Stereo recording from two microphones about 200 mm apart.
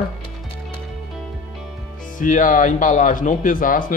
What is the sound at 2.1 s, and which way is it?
Speech, 40° left (ahead or behind).